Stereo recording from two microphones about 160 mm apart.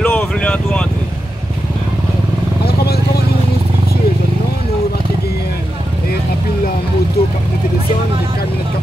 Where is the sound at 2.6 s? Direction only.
80° left.